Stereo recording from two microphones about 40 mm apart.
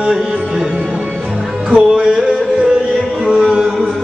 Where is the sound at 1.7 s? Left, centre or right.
Right.